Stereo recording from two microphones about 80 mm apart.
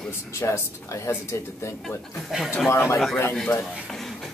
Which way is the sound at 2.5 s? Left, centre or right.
Left.